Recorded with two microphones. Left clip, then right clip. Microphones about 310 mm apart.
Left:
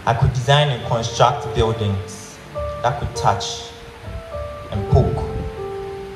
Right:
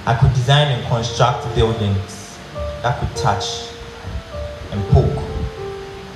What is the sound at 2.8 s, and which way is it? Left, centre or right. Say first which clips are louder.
Speech: even; left.